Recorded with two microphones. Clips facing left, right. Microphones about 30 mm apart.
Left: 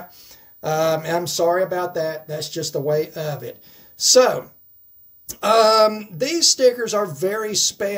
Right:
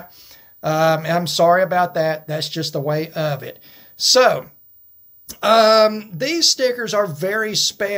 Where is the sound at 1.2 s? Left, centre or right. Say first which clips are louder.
Right 7 dB; right.